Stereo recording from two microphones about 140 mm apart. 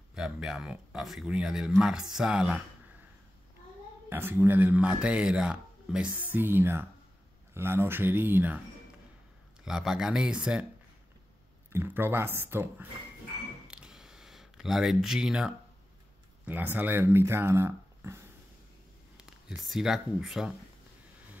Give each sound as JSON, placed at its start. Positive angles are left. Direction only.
{"t": 0.1, "sound": "speech", "side_deg": -5}
{"t": 4.1, "sound": "speech", "side_deg": -15}
{"t": 9.7, "sound": "speech", "side_deg": -5}
{"t": 11.7, "sound": "speech", "side_deg": -15}
{"t": 13.7, "sound": "a sound", "side_deg": -5}
{"t": 16.4, "sound": "speech", "side_deg": -10}
{"t": 19.1, "sound": "speech", "side_deg": -5}